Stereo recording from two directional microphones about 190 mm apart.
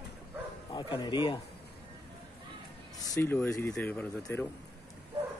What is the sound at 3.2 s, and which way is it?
Speech, 10° left (ahead or behind).